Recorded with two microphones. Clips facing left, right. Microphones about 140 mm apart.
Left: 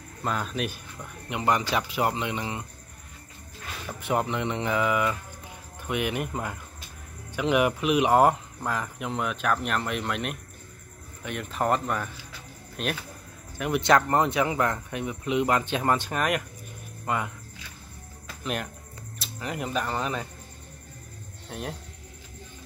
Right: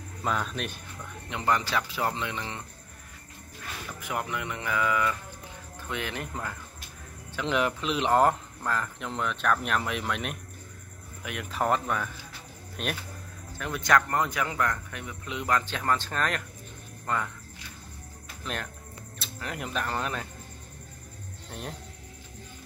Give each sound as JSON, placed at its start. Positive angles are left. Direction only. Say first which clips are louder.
{"t": 0.2, "sound": "speech", "louder": "left 1 dB", "side_deg": 0}
{"t": 1.3, "sound": "speech", "louder": "left 2 dB", "side_deg": 15}
{"t": 4.0, "sound": "speech", "louder": "left 6 dB", "side_deg": 25}
{"t": 13.6, "sound": "speech", "louder": "left 4 dB", "side_deg": 20}
{"t": 18.4, "sound": "speech", "louder": "left 4 dB", "side_deg": 5}
{"t": 21.5, "sound": "speech", "louder": "left 4 dB", "side_deg": 5}